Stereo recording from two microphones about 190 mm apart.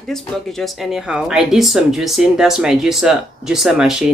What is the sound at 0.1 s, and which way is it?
Speech, centre (ahead or behind).